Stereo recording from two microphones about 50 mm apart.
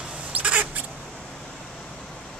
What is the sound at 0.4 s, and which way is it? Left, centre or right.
Rodents, right.